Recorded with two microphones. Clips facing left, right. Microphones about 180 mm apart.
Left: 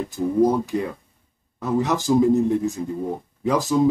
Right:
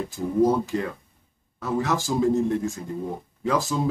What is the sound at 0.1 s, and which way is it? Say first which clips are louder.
Speech: left 2 dB; 15° left (ahead or behind).